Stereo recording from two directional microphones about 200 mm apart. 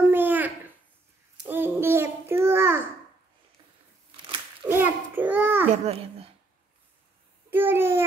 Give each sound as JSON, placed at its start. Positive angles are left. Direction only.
{"t": 0.1, "sound": "babbling", "side_deg": -10}
{"t": 1.5, "sound": "babbling", "side_deg": -10}
{"t": 4.6, "sound": "babbling", "side_deg": -10}
{"t": 5.7, "sound": "a child's voice", "side_deg": -30}
{"t": 7.5, "sound": "a sound", "side_deg": -10}